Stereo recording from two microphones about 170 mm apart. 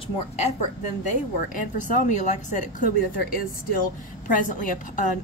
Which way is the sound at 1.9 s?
45° left (ahead or behind).